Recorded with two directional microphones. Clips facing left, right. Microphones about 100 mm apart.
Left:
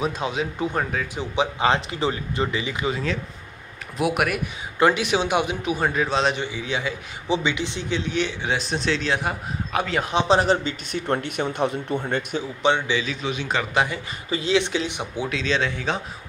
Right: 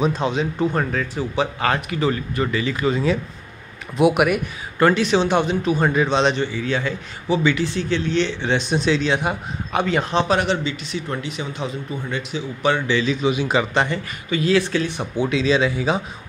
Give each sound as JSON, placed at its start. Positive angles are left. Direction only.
{"t": 0.0, "sound": "speech", "side_deg": 5}
{"t": 1.3, "sound": "speech", "side_deg": 20}
{"t": 4.0, "sound": "a man's voice", "side_deg": 0}
{"t": 4.7, "sound": "speech", "side_deg": 15}
{"t": 5.8, "sound": "a man's voice", "side_deg": 0}
{"t": 6.4, "sound": "speech", "side_deg": 15}
{"t": 10.2, "sound": "speech", "side_deg": 30}
{"t": 10.5, "sound": "a man's voice", "side_deg": 45}
{"t": 12.6, "sound": "speech", "side_deg": 20}
{"t": 13.0, "sound": "a man's voice", "side_deg": 0}
{"t": 14.3, "sound": "speech", "side_deg": 20}
{"t": 15.2, "sound": "a man's voice", "side_deg": -5}